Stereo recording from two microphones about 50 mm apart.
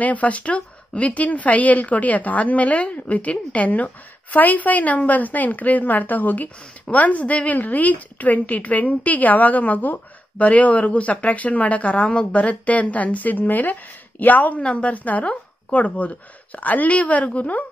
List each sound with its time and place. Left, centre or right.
0.0 s a woman's voice: left